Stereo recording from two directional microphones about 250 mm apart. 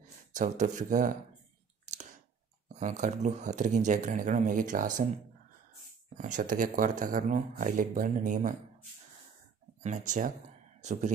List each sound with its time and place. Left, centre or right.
0.0 s speech: right
1.9 s clicking: right
2.7 s speech: right
6.1 s speech: right
9.8 s speech: right